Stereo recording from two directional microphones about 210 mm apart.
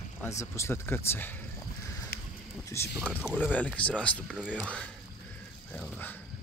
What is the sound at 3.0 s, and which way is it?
Speech, 5° right (ahead or behind).